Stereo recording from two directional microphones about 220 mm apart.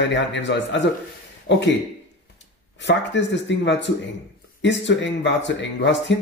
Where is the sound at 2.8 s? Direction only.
55° left (ahead or behind).